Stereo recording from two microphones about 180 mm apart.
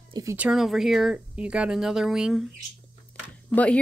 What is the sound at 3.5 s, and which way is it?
Speech, 5° left (ahead or behind).